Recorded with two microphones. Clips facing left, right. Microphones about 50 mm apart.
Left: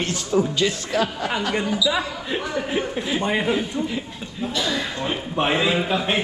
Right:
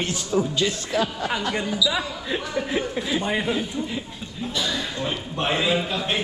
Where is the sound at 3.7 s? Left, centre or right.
Left.